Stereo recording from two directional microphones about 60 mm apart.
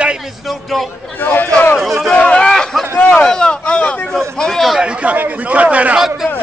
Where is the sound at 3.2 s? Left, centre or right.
Centre.